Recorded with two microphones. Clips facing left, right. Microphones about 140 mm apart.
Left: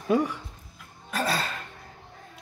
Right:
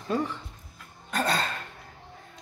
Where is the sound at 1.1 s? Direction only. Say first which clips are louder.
Right 1 dB; 5° left (ahead or behind).